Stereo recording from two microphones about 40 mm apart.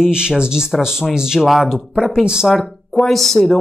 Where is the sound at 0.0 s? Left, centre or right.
Centre.